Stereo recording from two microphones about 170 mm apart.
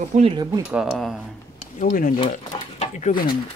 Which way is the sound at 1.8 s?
50° left (ahead or behind).